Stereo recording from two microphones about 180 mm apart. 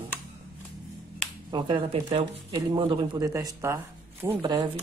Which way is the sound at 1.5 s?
25° right (ahead or behind).